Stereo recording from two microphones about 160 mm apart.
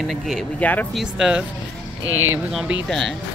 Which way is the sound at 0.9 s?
5° right (ahead or behind).